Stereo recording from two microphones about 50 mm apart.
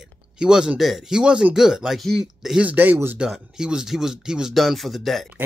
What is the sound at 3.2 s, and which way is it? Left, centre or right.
Speech, centre.